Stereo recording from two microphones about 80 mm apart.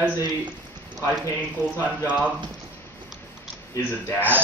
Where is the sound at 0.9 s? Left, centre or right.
Centre.